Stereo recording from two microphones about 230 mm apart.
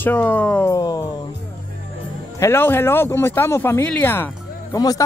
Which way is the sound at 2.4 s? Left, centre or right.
Centre.